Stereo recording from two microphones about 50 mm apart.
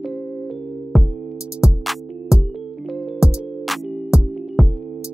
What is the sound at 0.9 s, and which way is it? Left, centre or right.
Music, centre.